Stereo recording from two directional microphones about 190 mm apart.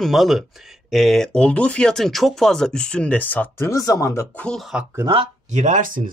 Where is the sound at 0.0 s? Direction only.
Centre (ahead or behind).